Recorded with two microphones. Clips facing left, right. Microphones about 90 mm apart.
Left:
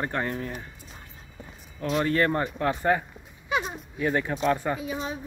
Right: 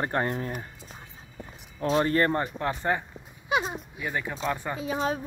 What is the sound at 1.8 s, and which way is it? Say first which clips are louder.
Speech: right 1 dB; 30° right (ahead or behind).